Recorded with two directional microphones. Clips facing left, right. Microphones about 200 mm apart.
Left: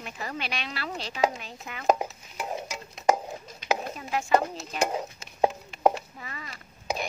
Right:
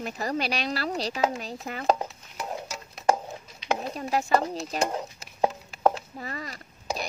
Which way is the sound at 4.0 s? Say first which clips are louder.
Right 4 dB; 40° right (ahead or behind).